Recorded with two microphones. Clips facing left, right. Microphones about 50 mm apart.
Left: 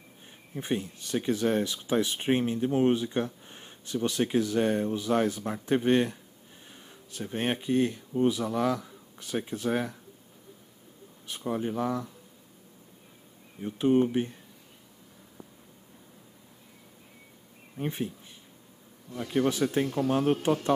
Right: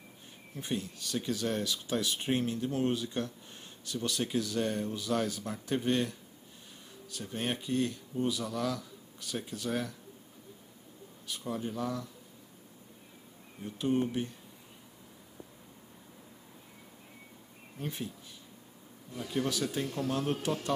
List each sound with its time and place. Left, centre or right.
0.6 s speech: left
11.2 s speech: left
13.6 s speech: left
17.7 s speech: left
19.3 s speech: left